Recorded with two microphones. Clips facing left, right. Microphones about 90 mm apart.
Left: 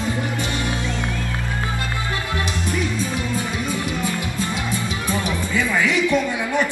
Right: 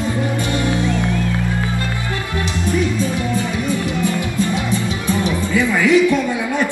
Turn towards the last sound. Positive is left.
turn(degrees=-15)  # may be behind; listen again after turning